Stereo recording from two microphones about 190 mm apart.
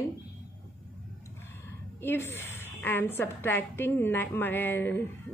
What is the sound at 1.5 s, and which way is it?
A woman's voice, 10° left (ahead or behind).